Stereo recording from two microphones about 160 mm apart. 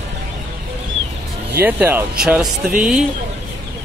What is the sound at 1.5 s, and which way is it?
Speech, 10° right (ahead or behind).